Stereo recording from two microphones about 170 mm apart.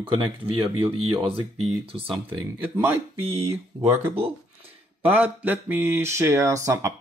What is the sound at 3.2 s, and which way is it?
Speech, 35° right (ahead or behind).